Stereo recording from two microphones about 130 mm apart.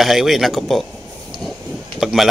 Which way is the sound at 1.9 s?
5° right (ahead or behind).